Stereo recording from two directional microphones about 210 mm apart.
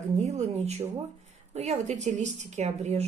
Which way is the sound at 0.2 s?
30° right (ahead or behind).